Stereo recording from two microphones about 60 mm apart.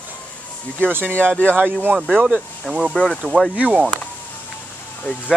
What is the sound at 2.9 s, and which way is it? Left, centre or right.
Speech, centre.